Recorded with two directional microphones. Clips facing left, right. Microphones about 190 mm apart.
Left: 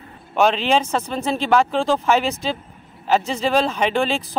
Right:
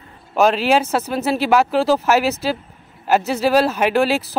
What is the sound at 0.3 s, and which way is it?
Speech, 5° right (ahead or behind).